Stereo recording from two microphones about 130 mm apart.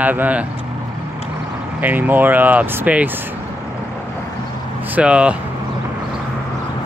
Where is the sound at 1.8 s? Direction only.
15° right (ahead or behind).